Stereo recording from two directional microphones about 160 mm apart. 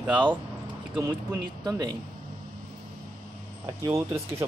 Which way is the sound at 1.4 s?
25° right (ahead or behind).